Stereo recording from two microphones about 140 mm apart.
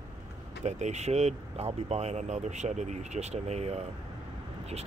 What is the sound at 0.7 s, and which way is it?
Speech, 55° right (ahead or behind).